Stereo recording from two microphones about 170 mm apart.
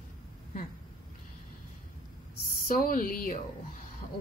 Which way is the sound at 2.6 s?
55° left (ahead or behind).